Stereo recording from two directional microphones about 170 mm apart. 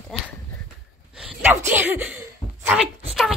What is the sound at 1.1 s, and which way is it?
Sneeze, 5° right (ahead or behind).